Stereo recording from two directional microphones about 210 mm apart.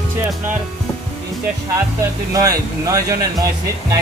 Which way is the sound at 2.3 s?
15° right (ahead or behind).